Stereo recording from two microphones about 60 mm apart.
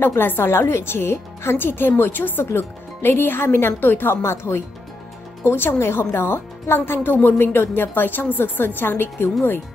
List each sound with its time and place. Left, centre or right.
0.1 s a woman's voice: left